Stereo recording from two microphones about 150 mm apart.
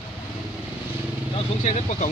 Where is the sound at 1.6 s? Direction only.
50° left (ahead or behind).